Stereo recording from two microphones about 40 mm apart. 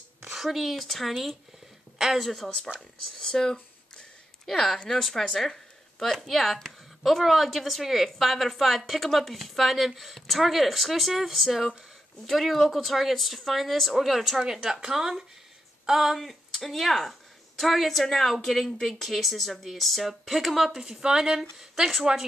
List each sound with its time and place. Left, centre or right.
0.3 s a woman's voice: centre
3.2 s a woman's voice: centre
5.1 s speech: centre
5.9 s a woman's voice: centre
14.4 s a woman's voice: centre
20.8 s speech: centre